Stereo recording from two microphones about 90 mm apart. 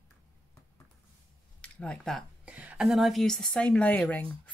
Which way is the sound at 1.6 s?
10° left (ahead or behind).